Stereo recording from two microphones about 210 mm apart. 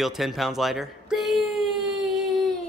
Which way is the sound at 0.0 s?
Centre (ahead or behind).